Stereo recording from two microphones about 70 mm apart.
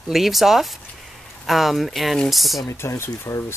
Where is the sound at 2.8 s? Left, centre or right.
Left.